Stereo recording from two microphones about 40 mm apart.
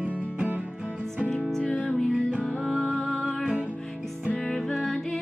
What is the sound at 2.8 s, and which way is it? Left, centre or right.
Music, centre.